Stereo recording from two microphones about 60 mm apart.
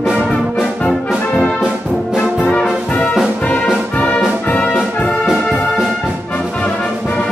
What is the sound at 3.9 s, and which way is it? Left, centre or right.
Music, left.